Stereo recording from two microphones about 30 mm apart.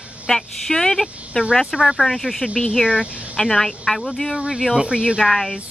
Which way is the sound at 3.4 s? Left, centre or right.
Centre.